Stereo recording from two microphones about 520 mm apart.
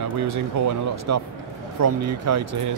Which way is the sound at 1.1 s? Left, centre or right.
Right.